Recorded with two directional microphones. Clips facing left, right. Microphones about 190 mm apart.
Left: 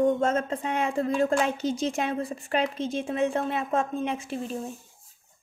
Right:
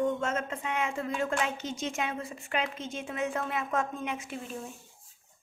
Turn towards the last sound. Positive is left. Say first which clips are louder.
# left 7 dB
turn(degrees=30)  # may be behind; listen again after turning